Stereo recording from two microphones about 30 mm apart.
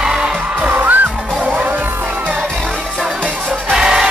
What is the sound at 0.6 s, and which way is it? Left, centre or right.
Music, right.